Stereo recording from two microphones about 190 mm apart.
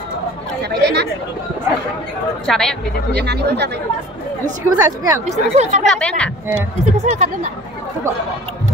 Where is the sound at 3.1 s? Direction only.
60° right (ahead or behind).